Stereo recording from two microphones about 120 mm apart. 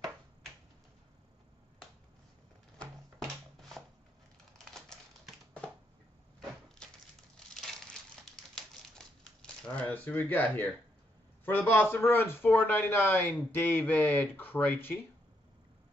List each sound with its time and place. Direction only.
2.8 s a sound: centre (ahead or behind)
4.6 s typewriter: 5° left (ahead or behind)
7.3 s crumpling: 5° left (ahead or behind)
11.4 s a man's voice: 15° left (ahead or behind)